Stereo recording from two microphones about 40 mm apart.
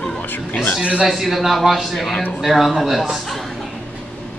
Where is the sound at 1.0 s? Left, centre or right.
Centre.